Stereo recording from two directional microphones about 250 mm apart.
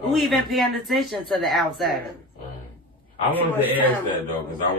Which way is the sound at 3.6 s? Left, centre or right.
Centre.